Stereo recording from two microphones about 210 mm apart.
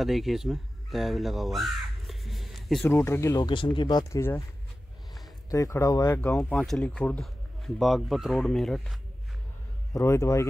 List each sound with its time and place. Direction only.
0.0 s speech: centre (ahead or behind)
2.9 s speech: 10° left (ahead or behind)
5.5 s speech: 15° left (ahead or behind)
9.9 s speech: 15° left (ahead or behind)